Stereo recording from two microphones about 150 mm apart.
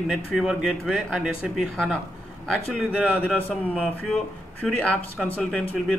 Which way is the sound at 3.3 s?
5° left (ahead or behind).